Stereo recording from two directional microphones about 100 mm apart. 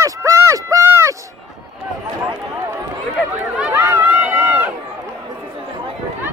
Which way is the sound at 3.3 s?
15° right (ahead or behind).